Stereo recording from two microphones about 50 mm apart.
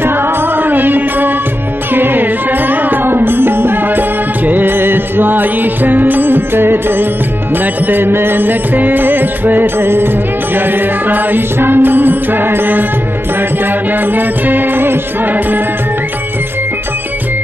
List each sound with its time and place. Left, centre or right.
0.0 s music: right